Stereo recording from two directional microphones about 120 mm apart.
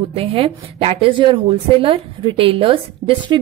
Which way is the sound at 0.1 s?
50° right (ahead or behind).